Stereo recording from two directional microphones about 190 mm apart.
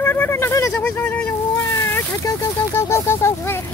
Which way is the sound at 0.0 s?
10° left (ahead or behind).